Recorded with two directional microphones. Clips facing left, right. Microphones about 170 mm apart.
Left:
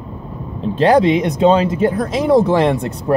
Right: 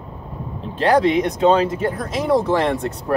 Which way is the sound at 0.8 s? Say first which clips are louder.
Left 4 dB; 20° left (ahead or behind).